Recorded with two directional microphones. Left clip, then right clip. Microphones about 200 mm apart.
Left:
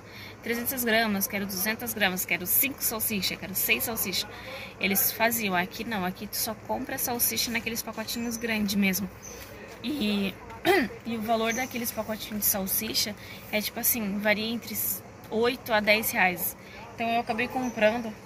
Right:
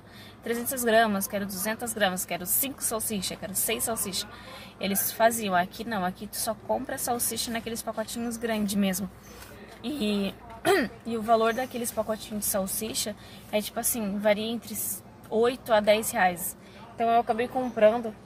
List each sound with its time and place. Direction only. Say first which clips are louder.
0.5 s speech: right 2 dB; 15° right (ahead or behind)